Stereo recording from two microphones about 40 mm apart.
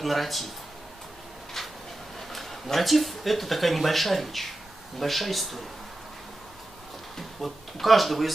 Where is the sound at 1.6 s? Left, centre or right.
Centre.